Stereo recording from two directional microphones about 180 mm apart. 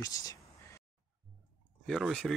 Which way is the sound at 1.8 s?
Centre (ahead or behind).